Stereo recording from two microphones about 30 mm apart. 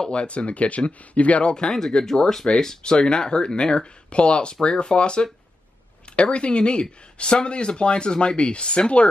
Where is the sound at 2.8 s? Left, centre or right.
Left.